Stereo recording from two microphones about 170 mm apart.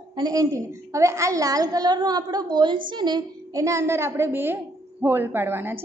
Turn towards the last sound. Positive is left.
turn(degrees=-15)  # may be behind; listen again after turning